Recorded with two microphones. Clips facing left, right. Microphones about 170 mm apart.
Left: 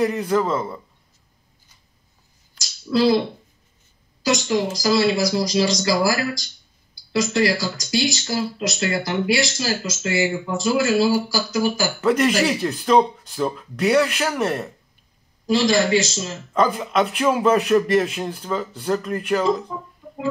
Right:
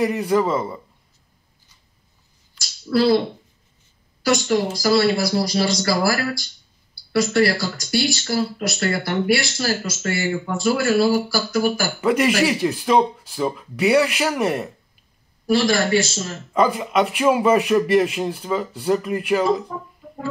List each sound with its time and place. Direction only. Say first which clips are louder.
0.0 s speech: right 1 dB; 5° right (ahead or behind)
2.9 s a man's voice: right 1 dB; 15° left (ahead or behind)
4.3 s speech: right 1 dB; 20° left (ahead or behind)
12.0 s speech: even; 5° right (ahead or behind)
15.6 s a man's voice: left 3 dB; 20° left (ahead or behind)
16.5 s speech: right 1 dB; 5° right (ahead or behind)